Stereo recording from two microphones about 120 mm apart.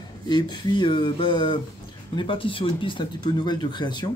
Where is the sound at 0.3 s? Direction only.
35° left (ahead or behind).